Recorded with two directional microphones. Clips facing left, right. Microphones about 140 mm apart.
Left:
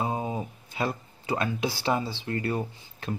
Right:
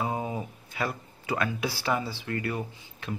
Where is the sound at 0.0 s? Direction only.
25° left (ahead or behind).